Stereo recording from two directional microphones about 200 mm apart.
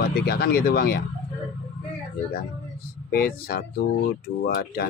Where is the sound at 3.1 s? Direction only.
50° left (ahead or behind).